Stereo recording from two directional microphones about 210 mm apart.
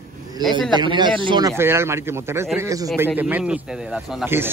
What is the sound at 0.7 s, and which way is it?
Speech, 20° right (ahead or behind).